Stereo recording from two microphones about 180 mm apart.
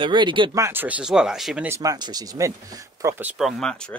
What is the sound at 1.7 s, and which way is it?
Speech, 20° right (ahead or behind).